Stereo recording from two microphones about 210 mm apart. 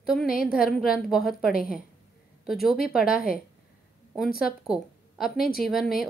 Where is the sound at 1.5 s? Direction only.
45° left (ahead or behind).